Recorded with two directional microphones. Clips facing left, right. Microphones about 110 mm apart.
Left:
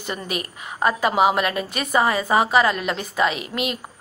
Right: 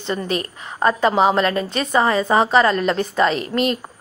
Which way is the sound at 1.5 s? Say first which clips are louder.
Right 4 dB; 30° right (ahead or behind).